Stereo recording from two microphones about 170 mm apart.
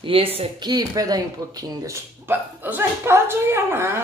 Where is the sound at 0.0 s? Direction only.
30° right (ahead or behind).